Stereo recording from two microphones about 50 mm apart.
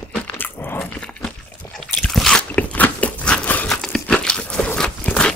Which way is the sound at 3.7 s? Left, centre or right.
Centre.